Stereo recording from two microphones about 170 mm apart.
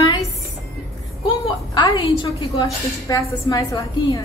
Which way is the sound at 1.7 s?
20° left (ahead or behind).